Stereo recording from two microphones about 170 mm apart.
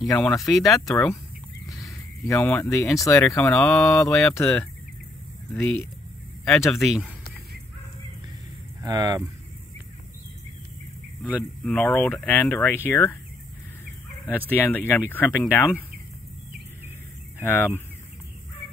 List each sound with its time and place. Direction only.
0.1 s speech: centre (ahead or behind)
1.7 s speech: 20° left (ahead or behind)
4.1 s speech: 5° left (ahead or behind)
8.8 s speech: 20° right (ahead or behind)
11.6 s speech: 10° left (ahead or behind)
14.5 s speech: 10° left (ahead or behind)
17.4 s speech: 15° left (ahead or behind)